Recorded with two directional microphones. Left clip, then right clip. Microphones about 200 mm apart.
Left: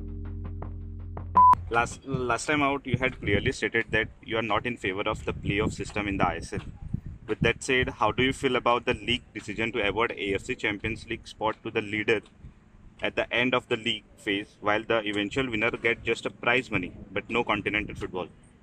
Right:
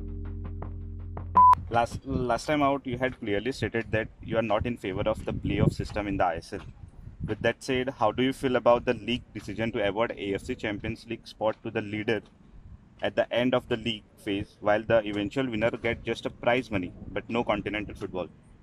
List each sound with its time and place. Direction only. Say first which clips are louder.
0.2 s music: even; centre (ahead or behind)
1.1 s telephone dialing: even; centre (ahead or behind)
1.7 s speech: even; 60° right (ahead or behind)
7.6 s speech: left 2 dB; 60° right (ahead or behind)